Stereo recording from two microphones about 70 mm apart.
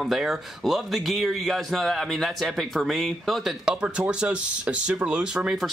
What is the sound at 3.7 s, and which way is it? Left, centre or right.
Speech, centre.